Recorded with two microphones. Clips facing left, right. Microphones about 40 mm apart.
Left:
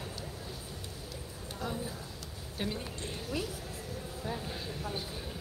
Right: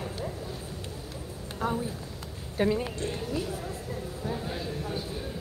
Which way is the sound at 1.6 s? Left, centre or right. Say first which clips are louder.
Right 8 dB; right.